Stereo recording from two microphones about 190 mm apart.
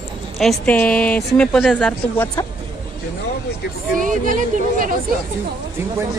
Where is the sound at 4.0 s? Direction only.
45° right (ahead or behind).